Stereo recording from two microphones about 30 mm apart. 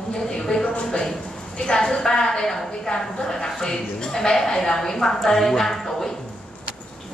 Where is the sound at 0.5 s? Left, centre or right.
Left.